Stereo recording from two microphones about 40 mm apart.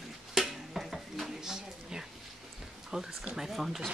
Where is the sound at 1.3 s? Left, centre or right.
Centre.